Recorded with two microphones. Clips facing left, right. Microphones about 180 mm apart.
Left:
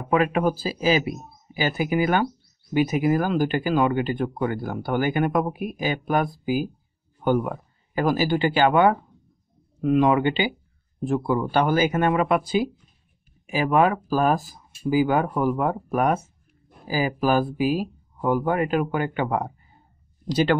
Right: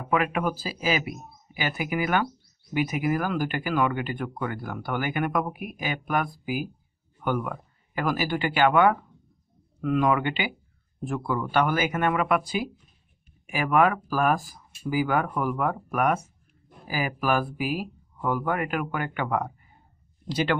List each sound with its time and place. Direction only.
0.1 s speech: 30° left (ahead or behind)